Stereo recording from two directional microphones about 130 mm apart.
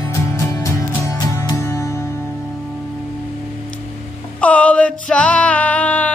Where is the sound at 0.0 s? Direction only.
25° left (ahead or behind).